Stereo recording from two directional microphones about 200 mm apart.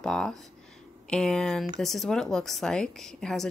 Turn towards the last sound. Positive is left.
turn(degrees=0)  # may be behind; listen again after turning